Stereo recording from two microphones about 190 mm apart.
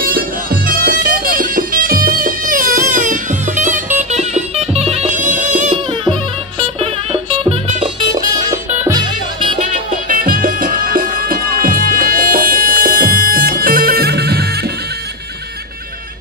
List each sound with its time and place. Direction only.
0.0 s music: 50° right (ahead or behind)
6.8 s music: 30° right (ahead or behind)
9.6 s music: 40° right (ahead or behind); by 14.4 s 55° right (ahead or behind)